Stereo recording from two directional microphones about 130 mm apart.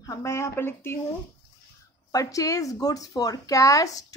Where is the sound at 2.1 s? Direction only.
25° left (ahead or behind).